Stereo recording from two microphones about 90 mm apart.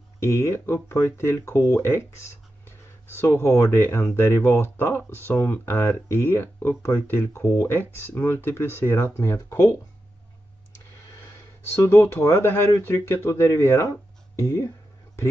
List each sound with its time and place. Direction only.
0.2 s speech: 35° left (ahead or behind)
11.7 s speech: 30° left (ahead or behind)